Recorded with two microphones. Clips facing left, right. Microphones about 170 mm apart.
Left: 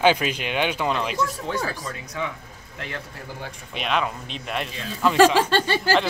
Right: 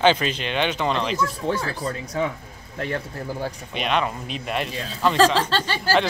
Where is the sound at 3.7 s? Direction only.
Centre (ahead or behind).